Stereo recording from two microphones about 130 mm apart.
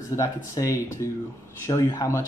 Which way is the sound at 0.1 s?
25° left (ahead or behind).